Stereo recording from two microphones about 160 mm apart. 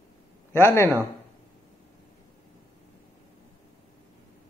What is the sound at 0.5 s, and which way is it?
Speech, 15° left (ahead or behind).